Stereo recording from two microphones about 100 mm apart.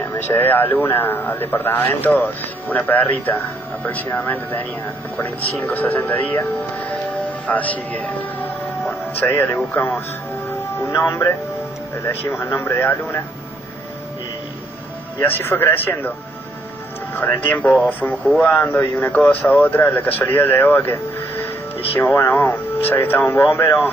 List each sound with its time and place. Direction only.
0.0 s a man's voice: 25° left (ahead or behind)
12.3 s a man's voice: 25° left (ahead or behind)
15.1 s a man's voice: 25° left (ahead or behind)
17.1 s a man's voice: 20° left (ahead or behind)